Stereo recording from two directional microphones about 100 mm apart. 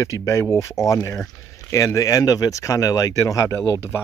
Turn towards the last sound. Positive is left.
turn(degrees=25)  # may be behind; listen again after turning